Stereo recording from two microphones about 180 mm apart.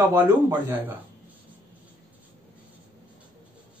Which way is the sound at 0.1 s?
15° right (ahead or behind).